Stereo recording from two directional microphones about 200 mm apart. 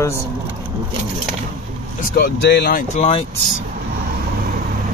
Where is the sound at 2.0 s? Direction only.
50° left (ahead or behind).